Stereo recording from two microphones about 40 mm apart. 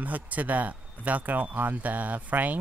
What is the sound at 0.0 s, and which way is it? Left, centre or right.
Speech, right.